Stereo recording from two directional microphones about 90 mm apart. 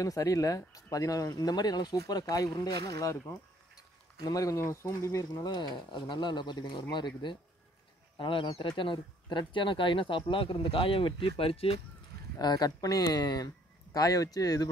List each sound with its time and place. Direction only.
0.0 s speech: 40° left (ahead or behind)
4.6 s speech: 30° left (ahead or behind)
5.4 s speech: 50° left (ahead or behind)
8.2 s speech: 70° left (ahead or behind)
8.6 s speech: 60° left (ahead or behind); by 11.8 s 90° left
12.4 s speech: 50° left (ahead or behind)